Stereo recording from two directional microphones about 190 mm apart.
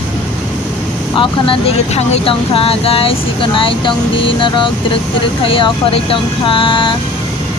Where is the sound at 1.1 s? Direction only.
25° left (ahead or behind).